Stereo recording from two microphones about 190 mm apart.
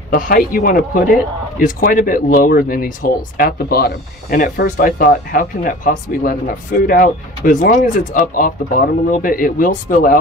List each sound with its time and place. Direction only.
0.1 s speech: 50° left (ahead or behind)